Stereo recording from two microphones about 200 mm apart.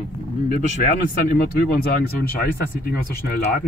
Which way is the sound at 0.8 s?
45° left (ahead or behind).